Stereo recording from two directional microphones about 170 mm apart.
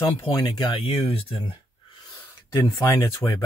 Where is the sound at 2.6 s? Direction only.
20° left (ahead or behind).